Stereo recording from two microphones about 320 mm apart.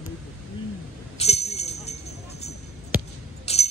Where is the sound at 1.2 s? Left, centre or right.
Centre.